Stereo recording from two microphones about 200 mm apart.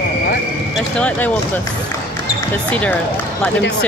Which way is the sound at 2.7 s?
5° left (ahead or behind).